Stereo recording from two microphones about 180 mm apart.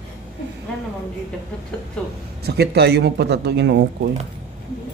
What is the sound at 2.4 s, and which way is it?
Speech, 65° right (ahead or behind).